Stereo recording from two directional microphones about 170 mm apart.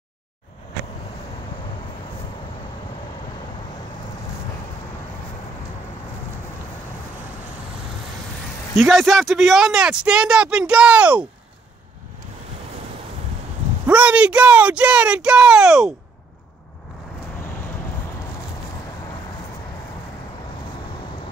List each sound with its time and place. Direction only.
8.7 s speech: centre (ahead or behind)
13.8 s speech: 10° right (ahead or behind)